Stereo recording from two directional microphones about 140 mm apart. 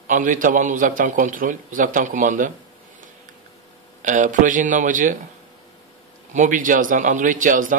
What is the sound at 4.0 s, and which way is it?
A man's voice, 65° right (ahead or behind).